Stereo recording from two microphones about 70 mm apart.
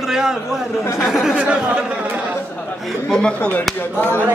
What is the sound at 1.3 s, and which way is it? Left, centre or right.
Speech, centre.